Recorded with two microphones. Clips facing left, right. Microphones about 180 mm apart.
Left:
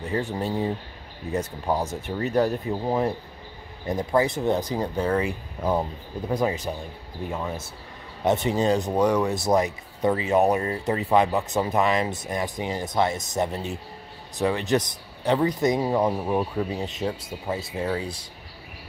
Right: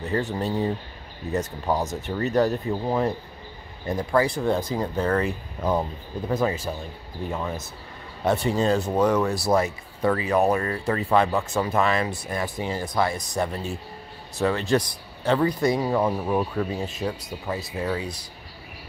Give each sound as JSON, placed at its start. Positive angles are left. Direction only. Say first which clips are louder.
{"t": 0.0, "sound": "speech", "louder": "right 1 dB", "side_deg": 10}
{"t": 8.2, "sound": "speech", "louder": "even", "side_deg": 20}